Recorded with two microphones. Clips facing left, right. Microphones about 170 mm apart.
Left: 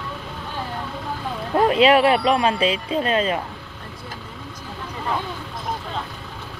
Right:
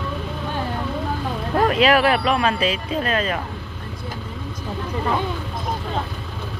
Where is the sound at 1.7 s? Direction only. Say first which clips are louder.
Left 2 dB; 25° left (ahead or behind).